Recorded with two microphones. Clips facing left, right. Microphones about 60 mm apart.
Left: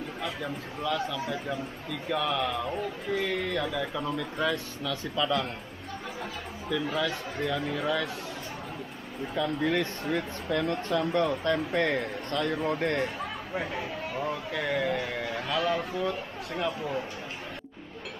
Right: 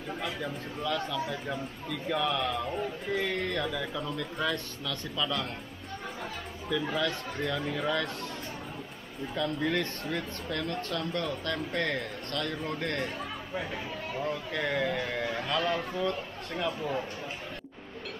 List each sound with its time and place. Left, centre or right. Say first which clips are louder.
0.2 s speech: left 2 dB; centre
6.7 s speech: left 1 dB; centre
9.3 s a man's voice: left 2 dB; centre
13.6 s speech: left 3 dB; centre